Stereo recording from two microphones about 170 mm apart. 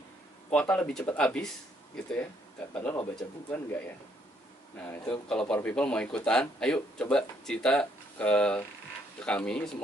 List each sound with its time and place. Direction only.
0.5 s speech: 5° left (ahead or behind)
2.7 s speech: 10° left (ahead or behind)